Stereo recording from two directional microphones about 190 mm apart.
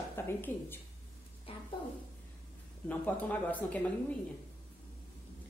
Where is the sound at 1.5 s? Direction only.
30° left (ahead or behind).